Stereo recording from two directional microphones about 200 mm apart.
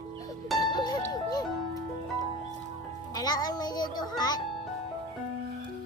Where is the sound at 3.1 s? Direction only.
20° left (ahead or behind).